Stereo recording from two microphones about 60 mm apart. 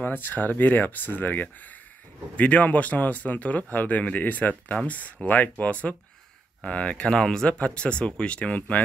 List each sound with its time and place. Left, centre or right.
0.0 s speech: left